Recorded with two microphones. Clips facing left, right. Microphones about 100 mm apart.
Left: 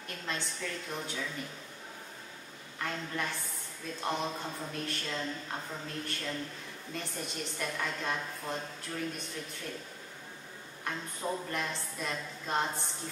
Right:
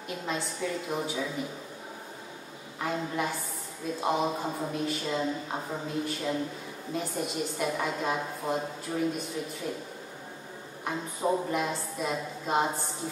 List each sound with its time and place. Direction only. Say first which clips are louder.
0.1 s a woman's voice: right 6 dB; 5° right (ahead or behind)
2.8 s a woman's voice: right 6 dB; 10° right (ahead or behind)
4.5 s a woman's voice: right 7 dB; 15° right (ahead or behind)
4.7 s a woman's voice: right 7 dB; 5° right (ahead or behind)
10.8 s a woman's voice: right 6 dB; 10° right (ahead or behind)